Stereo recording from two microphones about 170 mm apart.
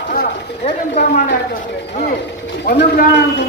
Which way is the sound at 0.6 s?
45° left (ahead or behind).